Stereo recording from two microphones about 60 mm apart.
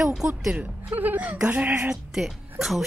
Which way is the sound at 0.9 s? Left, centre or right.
Right.